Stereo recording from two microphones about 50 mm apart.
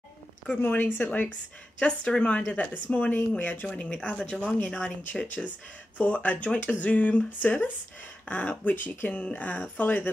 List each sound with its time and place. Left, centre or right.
0.6 s speech: left
1.8 s speech: left
3.6 s speech: left